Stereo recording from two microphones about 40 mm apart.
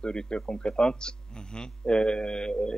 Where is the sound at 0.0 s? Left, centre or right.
Left.